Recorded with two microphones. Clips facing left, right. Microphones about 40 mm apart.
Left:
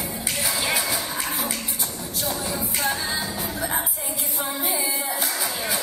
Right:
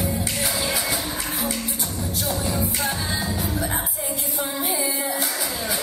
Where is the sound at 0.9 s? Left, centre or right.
Centre.